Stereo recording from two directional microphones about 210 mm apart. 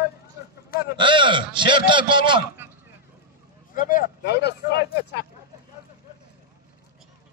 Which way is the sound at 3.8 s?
40° left (ahead or behind).